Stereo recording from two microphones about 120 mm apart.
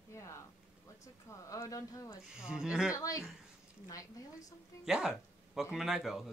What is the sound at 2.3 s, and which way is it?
Speech, 5° right (ahead or behind).